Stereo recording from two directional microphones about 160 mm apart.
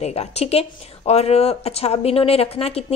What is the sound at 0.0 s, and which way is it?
Speech, 40° left (ahead or behind).